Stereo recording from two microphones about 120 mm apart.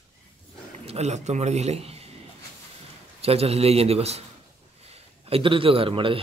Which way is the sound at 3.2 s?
60° right (ahead or behind).